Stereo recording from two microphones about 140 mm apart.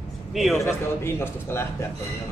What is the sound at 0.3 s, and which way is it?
Speech, centre (ahead or behind).